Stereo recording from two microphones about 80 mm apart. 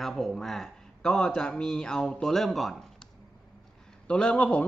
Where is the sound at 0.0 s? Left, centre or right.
Centre.